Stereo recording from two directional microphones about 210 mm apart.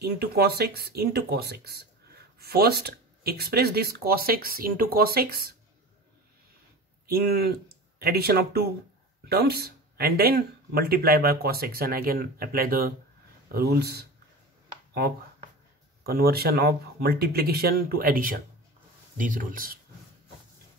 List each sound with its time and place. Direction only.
0.0 s speech: 50° right (ahead or behind)
7.1 s speech: 45° right (ahead or behind)
16.1 s speech: 45° right (ahead or behind)